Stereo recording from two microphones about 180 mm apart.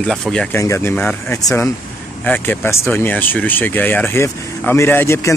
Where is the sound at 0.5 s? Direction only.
15° left (ahead or behind).